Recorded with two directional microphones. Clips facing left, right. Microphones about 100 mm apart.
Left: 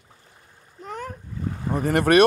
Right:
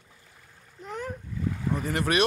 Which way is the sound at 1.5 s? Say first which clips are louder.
Left 5 dB; 50° left (ahead or behind).